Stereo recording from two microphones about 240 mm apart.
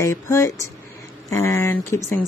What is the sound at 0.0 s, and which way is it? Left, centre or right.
Speech, centre.